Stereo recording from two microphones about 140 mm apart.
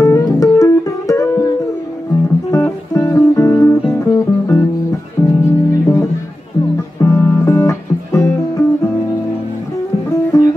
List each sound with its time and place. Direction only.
0.0 s music: 20° left (ahead or behind)
2.5 s music: 20° left (ahead or behind)
10.3 s music: 25° left (ahead or behind)